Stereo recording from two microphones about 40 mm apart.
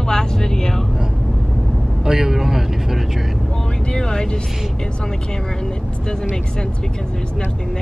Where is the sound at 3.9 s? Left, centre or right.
Left.